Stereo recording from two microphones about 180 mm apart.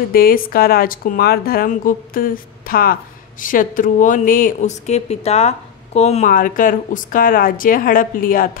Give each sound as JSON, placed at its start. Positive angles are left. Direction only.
{"t": 0.1, "sound": "a woman's voice", "side_deg": 55}
{"t": 6.3, "sound": "a woman's voice", "side_deg": 50}